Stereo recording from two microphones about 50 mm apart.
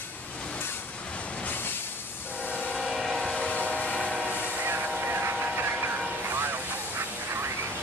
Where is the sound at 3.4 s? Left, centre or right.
Left.